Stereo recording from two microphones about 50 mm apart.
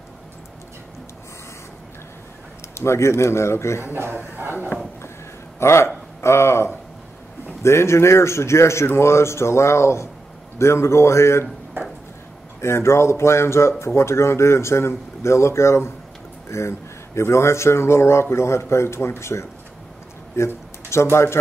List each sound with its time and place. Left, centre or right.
2.8 s a man's voice: left
4.2 s speech: right
5.6 s a man's voice: left
12.5 s speech: left